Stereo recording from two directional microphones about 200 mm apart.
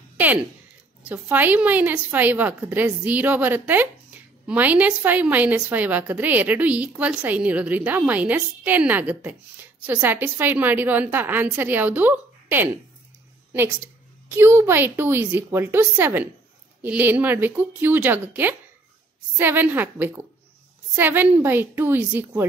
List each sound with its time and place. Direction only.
1.0 s a woman's voice: 10° right (ahead or behind)